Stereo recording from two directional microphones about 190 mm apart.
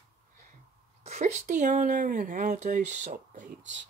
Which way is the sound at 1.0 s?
35° right (ahead or behind).